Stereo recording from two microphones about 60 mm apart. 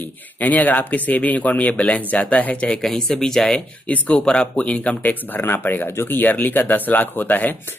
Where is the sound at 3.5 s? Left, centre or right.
Left.